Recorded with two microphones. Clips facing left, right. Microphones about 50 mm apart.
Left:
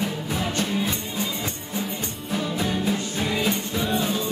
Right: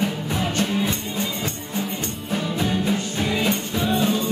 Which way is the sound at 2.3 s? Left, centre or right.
Centre.